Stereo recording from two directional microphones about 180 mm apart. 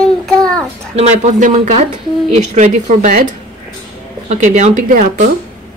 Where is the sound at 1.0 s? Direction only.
40° right (ahead or behind).